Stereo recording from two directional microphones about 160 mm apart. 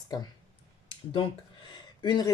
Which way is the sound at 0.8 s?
30° left (ahead or behind).